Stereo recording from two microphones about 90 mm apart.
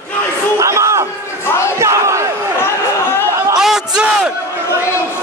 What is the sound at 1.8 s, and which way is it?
Battle cry, 35° right (ahead or behind).